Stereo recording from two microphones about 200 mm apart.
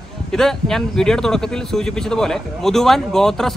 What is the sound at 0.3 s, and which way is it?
Speech, centre (ahead or behind).